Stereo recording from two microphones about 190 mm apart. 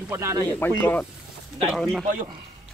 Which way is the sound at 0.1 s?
15° right (ahead or behind).